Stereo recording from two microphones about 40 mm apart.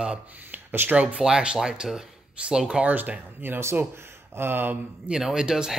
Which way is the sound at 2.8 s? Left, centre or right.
Right.